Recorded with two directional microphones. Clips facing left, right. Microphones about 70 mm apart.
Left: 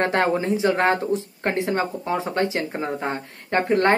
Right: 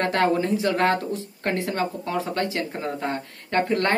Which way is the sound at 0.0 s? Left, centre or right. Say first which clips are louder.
Left 1 dB; left.